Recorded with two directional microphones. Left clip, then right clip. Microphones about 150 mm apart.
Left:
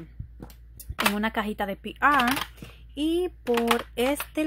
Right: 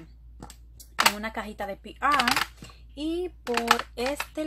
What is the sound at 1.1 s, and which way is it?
Speech, 65° left (ahead or behind).